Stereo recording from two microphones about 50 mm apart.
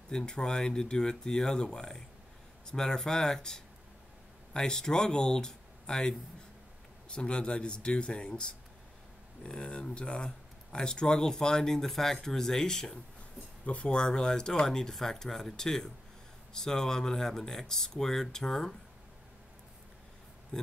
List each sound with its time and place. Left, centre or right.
0.1 s speech: centre
13.7 s speech: left; by 18.8 s centre
20.5 s speech: centre